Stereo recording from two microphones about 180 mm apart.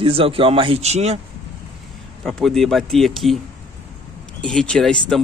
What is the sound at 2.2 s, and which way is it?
Speech, centre (ahead or behind).